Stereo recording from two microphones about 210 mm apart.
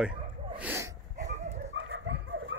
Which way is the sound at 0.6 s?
10° right (ahead or behind).